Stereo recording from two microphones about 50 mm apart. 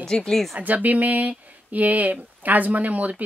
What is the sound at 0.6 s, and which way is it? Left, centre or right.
A woman's voice, right.